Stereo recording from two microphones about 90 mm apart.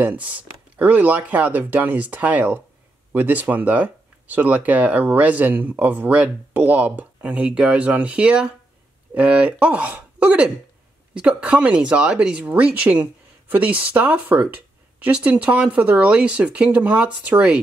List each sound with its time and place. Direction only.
0.0 s speech: 15° right (ahead or behind)